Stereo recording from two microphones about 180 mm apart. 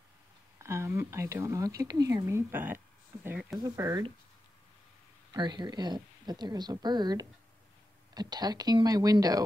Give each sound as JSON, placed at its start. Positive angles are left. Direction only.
{"t": 0.6, "sound": "speech", "side_deg": -15}
{"t": 3.5, "sound": "a woman's voice", "side_deg": -20}
{"t": 5.3, "sound": "a woman's voice", "side_deg": -25}